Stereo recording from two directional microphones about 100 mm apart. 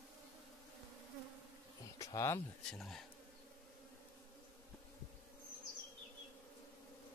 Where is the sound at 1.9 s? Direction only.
30° left (ahead or behind).